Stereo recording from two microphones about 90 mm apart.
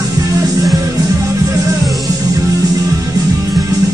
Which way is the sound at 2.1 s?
35° right (ahead or behind).